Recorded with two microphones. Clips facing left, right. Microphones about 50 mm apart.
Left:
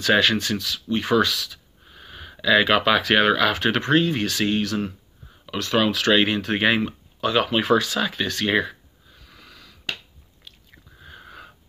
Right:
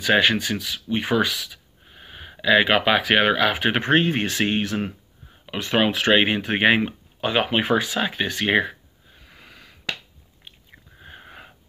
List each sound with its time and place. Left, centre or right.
0.0 s speech: centre
3.8 s speech: right
11.0 s sniff: right